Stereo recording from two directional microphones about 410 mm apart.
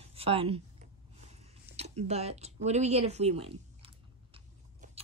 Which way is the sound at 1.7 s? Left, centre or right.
Centre.